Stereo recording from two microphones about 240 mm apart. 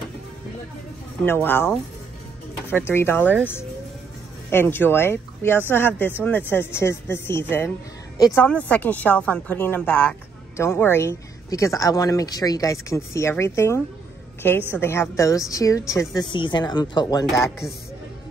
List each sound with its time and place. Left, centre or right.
1.2 s a woman's voice: centre